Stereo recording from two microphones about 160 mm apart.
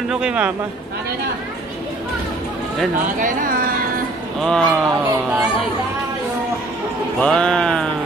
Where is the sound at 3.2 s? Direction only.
55° right (ahead or behind).